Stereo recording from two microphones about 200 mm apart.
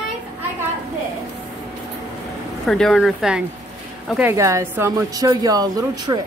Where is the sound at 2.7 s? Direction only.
Centre (ahead or behind); by 6.2 s 20° right (ahead or behind).